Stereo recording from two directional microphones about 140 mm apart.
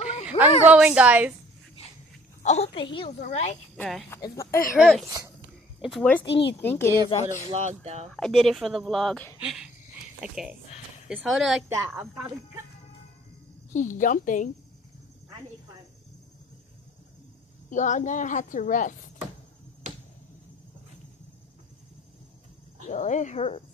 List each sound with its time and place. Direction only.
0.0 s a sound: 55° left (ahead or behind)
0.4 s a woman's voice: 10° right (ahead or behind)
2.4 s a child's voice: 50° left (ahead or behind)
3.2 s a woman's voice: 60° left (ahead or behind)
3.7 s speech: 10° left (ahead or behind)
4.7 s speech: centre (ahead or behind)
6.0 s speech: 15° left (ahead or behind)
7.1 s speech: 55° left (ahead or behind)
7.5 s speech: 50° right (ahead or behind)
8.1 s speech: centre (ahead or behind)
13.7 s a woman's voice: 65° left (ahead or behind)
17.6 s a woman's voice: 60° left (ahead or behind)
22.8 s a woman's voice: 60° left (ahead or behind)